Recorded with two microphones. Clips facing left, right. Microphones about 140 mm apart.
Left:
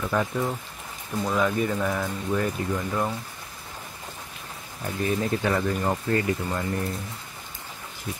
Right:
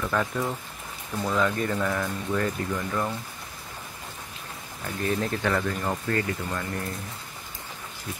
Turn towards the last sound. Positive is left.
turn(degrees=20)  # may be behind; listen again after turning